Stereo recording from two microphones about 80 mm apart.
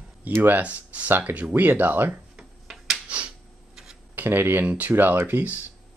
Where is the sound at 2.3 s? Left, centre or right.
Centre.